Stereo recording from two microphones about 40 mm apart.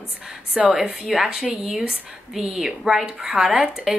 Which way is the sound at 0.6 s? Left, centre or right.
Centre.